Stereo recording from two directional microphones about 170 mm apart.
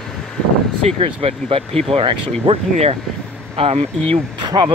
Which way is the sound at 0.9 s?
35° right (ahead or behind).